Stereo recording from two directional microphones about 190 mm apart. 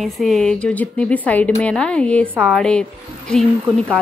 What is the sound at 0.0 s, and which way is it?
A woman's voice, centre (ahead or behind).